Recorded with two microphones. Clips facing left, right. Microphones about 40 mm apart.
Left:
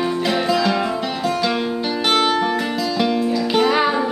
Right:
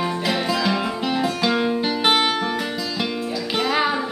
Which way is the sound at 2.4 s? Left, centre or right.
Centre.